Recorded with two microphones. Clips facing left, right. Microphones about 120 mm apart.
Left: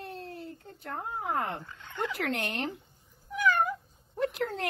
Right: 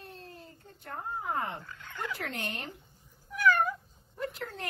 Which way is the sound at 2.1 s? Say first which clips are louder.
Left 6 dB; 80° left.